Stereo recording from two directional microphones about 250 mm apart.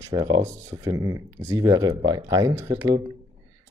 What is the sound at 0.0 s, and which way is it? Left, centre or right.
Speech, centre.